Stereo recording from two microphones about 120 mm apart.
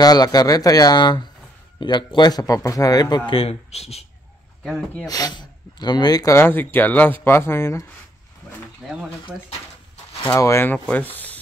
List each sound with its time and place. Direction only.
0.0 s a man's voice: 35° left (ahead or behind)
3.3 s speech: 55° left (ahead or behind)
4.6 s speech: 5° left (ahead or behind)
5.0 s speech: 30° left (ahead or behind)
6.3 s speech: 20° left (ahead or behind)
8.8 s speech: 5° right (ahead or behind)
10.3 s speech: 25° left (ahead or behind)